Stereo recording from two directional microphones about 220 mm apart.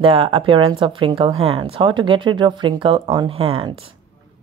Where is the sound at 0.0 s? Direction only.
25° right (ahead or behind).